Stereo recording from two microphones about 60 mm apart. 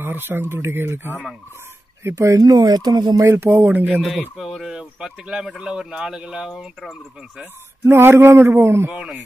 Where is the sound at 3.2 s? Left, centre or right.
Right.